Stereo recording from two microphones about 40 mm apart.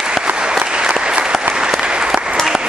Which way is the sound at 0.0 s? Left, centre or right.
Centre.